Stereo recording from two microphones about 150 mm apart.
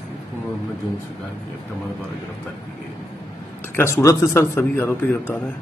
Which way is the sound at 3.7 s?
15° left (ahead or behind).